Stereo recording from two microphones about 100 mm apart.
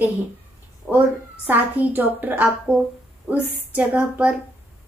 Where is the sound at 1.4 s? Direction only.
15° right (ahead or behind).